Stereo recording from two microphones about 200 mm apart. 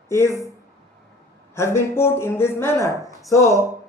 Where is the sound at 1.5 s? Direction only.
15° left (ahead or behind).